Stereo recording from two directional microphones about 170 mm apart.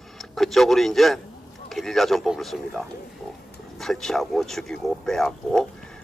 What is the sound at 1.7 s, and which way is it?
A man's voice, centre (ahead or behind).